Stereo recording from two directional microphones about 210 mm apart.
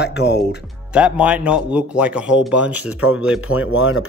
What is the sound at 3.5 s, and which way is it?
Speech, 90° left.